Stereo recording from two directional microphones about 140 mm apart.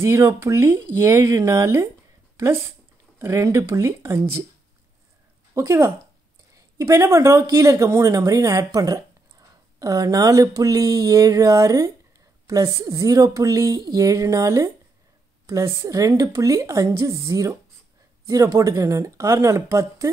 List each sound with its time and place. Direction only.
0.0 s speech: 20° right (ahead or behind)
5.5 s speech: 20° right (ahead or behind)